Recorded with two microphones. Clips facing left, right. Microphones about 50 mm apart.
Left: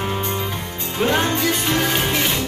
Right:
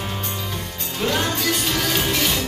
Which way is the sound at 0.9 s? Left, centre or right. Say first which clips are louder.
Left 3 dB; left.